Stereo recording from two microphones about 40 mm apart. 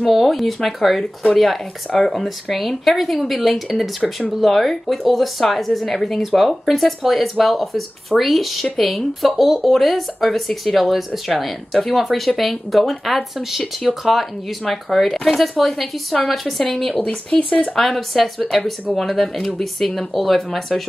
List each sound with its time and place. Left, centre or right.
0.0 s speech: centre
17.3 s speech: centre
17.7 s speech: centre